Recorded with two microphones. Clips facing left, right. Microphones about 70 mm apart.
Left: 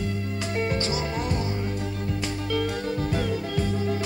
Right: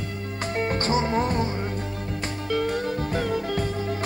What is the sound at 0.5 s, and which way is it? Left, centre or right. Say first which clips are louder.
Music: right 3 dB; right.